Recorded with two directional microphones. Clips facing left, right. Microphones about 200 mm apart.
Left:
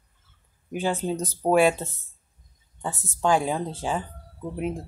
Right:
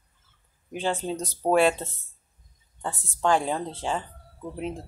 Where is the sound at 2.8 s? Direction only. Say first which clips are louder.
Left 1 dB; 10° left (ahead or behind).